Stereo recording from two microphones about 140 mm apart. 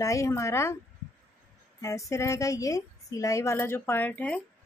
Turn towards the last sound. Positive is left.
turn(degrees=10)  # may be behind; listen again after turning